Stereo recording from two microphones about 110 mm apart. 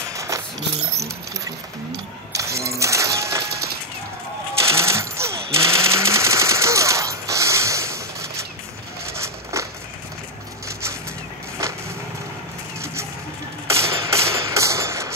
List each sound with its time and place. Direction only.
0.1 s a sound: 30° right (ahead or behind)
0.9 s keys jangling: 30° right (ahead or behind)
2.3 s coin: 25° right (ahead or behind)
4.7 s machine gun: 25° right (ahead or behind)
9.2 s a sound: 25° right (ahead or behind)
11.6 s wood: 30° right (ahead or behind)
13.7 s music: 25° right (ahead or behind)